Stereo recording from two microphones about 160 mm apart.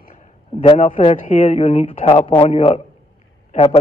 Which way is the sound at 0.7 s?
40° left (ahead or behind).